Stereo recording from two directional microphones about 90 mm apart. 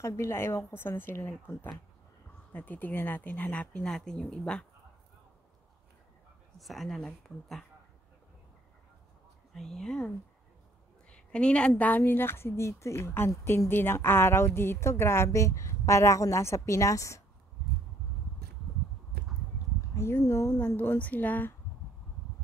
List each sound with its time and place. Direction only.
0.0 s speech: 30° left (ahead or behind); by 4.6 s 10° left (ahead or behind)
6.6 s speech: centre (ahead or behind)
9.6 s a woman's voice: 5° left (ahead or behind); by 17.2 s 35° left (ahead or behind)
20.0 s speech: 30° left (ahead or behind)